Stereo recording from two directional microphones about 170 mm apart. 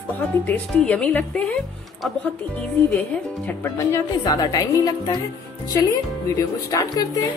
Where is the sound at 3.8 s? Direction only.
20° left (ahead or behind).